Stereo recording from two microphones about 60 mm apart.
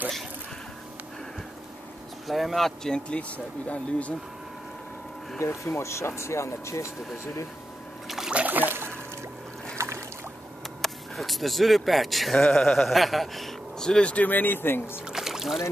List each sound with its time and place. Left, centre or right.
2.2 s speech: centre; by 4.1 s left
5.4 s speech: left
8.3 s trickle: right
9.8 s boat: right
10.8 s a man's voice: centre; by 15.0 s left
15.0 s a sound: centre